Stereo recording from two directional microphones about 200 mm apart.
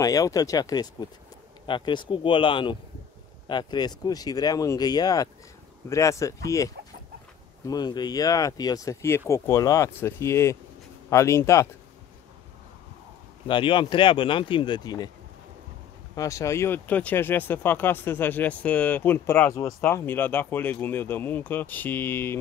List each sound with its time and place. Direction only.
0.0 s speech: 15° left (ahead or behind)
13.5 s speech: 25° left (ahead or behind)
16.2 s speech: 15° left (ahead or behind)